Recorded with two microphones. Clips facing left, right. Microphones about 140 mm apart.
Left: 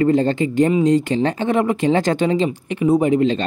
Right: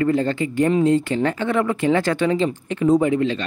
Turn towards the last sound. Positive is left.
turn(degrees=20)  # may be behind; listen again after turning